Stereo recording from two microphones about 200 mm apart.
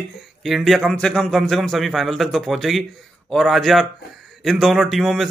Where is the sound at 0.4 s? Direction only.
Centre (ahead or behind).